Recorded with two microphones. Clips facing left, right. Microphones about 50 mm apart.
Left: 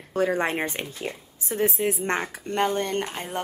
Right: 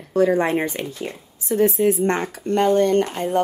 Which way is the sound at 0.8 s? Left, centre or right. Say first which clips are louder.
Right 6 dB; centre.